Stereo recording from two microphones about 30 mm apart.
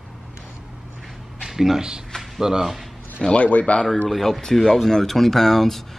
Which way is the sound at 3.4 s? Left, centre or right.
Left.